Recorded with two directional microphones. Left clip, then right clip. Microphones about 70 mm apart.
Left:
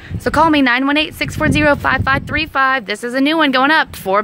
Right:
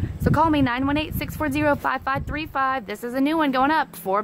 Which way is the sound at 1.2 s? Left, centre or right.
Centre.